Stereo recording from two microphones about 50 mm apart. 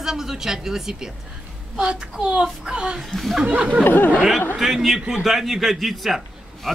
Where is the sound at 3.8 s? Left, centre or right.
Left.